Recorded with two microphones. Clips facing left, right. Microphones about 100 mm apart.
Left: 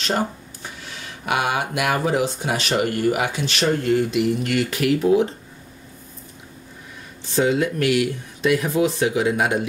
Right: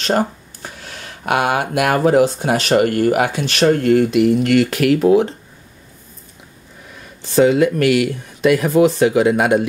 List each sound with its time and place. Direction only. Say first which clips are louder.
0.0 s speech: right 5 dB; 45° right (ahead or behind)
7.3 s speech: right 7 dB; 65° right (ahead or behind)